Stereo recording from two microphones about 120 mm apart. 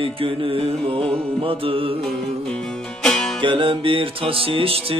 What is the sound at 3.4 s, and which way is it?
Music, 45° right (ahead or behind).